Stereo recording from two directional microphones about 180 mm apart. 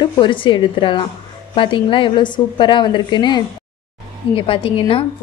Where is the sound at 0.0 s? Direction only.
25° left (ahead or behind).